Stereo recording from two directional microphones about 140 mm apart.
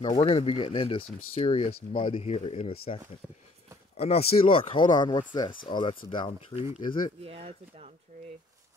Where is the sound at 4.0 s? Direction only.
45° left (ahead or behind).